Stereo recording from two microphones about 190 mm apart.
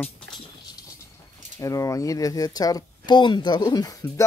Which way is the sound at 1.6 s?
15° left (ahead or behind).